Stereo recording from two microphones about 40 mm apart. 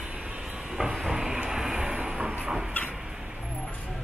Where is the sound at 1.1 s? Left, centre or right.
Centre.